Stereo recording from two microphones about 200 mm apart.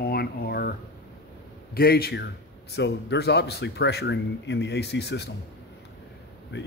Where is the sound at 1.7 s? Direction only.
50° left (ahead or behind).